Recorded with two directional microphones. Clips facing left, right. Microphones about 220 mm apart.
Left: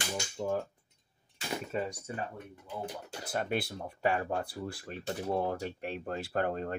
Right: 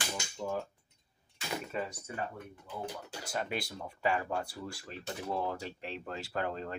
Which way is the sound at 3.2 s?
55° left (ahead or behind).